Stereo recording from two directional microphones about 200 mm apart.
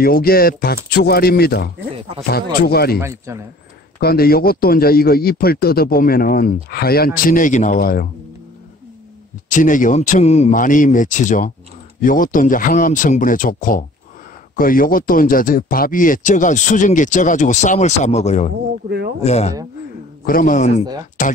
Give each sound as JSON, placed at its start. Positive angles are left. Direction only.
{"t": 0.0, "sound": "a man's voice", "side_deg": 50}
{"t": 2.6, "sound": "a man's voice", "side_deg": 50}
{"t": 3.0, "sound": "a man's voice", "side_deg": -15}
{"t": 4.0, "sound": "a man's voice", "side_deg": 50}
{"t": 9.5, "sound": "a man's voice", "side_deg": 40}
{"t": 18.9, "sound": "speech", "side_deg": -55}
{"t": 19.2, "sound": "speech", "side_deg": 35}
{"t": 20.2, "sound": "speech", "side_deg": 45}